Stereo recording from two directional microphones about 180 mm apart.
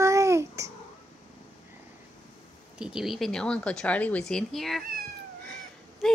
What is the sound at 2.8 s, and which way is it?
Speech, 5° right (ahead or behind).